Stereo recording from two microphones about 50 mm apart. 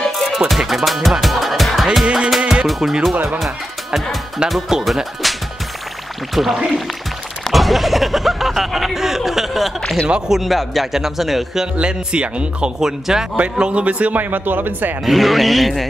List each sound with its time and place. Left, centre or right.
0.0 s music: centre
2.1 s music: centre
2.7 s speech: centre
6.3 s speech: centre
10.0 s speech: centre
10.3 s speech: centre
11.7 s speech: right
13.4 s a man's voice: right
15.0 s speech: centre